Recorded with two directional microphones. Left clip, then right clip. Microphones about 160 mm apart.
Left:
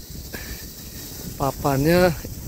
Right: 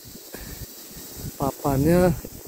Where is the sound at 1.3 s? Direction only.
5° right (ahead or behind).